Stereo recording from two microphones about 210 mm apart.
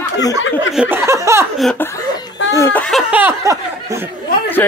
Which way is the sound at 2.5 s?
10° left (ahead or behind).